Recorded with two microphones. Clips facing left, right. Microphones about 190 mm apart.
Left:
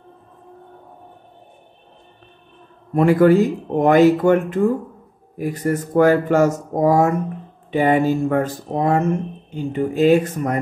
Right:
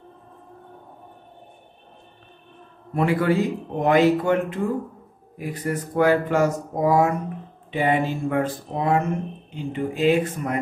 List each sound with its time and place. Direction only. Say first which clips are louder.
2.9 s speech: left 8 dB; 45° left (ahead or behind)